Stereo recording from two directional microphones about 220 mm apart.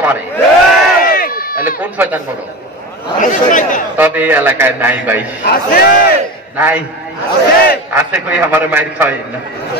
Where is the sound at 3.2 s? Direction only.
35° left (ahead or behind).